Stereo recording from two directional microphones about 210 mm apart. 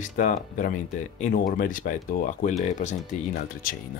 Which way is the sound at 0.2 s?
40° left (ahead or behind).